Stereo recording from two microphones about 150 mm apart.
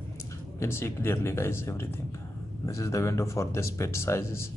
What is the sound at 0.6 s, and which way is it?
Speech, 15° left (ahead or behind).